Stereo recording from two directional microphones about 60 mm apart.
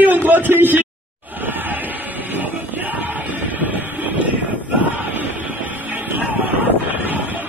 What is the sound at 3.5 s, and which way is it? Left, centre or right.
Vehicle, right.